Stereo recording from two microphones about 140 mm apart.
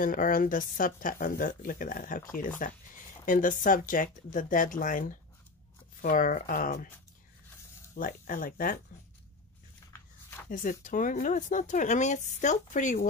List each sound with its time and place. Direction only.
0.0 s speech: 80° left
7.9 s speech: 80° left
10.5 s speech: 70° left (ahead or behind)